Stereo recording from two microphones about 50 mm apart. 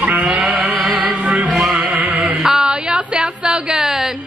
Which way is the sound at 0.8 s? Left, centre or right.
Centre.